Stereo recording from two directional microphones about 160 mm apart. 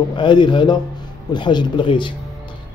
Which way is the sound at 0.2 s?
30° left (ahead or behind).